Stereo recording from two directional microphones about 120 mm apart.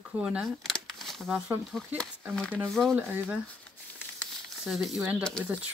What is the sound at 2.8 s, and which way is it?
Speech, 20° right (ahead or behind).